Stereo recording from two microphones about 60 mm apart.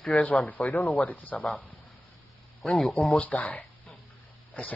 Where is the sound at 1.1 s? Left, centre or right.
Left.